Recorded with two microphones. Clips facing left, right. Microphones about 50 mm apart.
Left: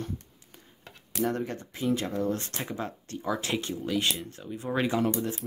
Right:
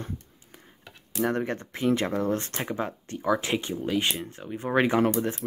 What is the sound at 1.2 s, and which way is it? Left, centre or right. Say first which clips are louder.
Speech: right 3 dB; right.